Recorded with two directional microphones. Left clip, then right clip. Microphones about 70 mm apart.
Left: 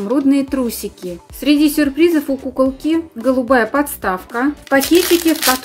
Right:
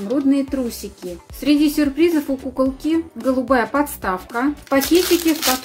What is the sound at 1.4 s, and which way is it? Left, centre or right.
A woman's voice, left.